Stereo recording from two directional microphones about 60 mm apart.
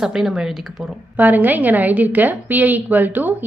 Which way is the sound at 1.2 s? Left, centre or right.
Right.